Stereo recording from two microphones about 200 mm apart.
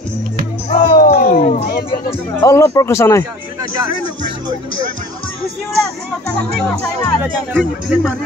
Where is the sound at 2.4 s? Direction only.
15° left (ahead or behind).